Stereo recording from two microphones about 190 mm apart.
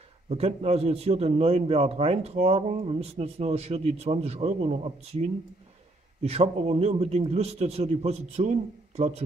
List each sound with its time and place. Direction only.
0.3 s a man's voice: 35° right (ahead or behind)